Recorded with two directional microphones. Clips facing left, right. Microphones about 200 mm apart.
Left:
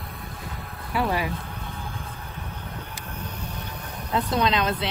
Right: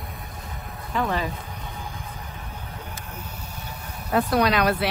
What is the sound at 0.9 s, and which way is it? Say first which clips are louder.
Speech: even; 10° left (ahead or behind).